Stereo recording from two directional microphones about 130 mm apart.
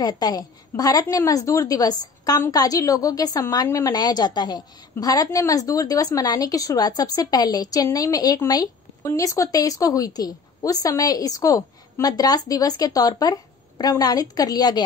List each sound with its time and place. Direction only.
0.0 s speech: 30° left (ahead or behind)